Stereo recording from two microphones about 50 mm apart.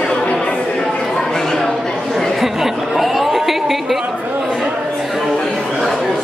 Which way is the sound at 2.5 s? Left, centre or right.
Centre.